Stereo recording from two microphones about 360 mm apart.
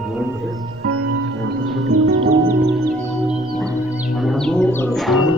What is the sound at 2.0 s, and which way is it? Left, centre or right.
Music, right.